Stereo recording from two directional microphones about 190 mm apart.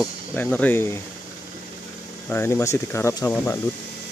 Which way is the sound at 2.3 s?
15° left (ahead or behind).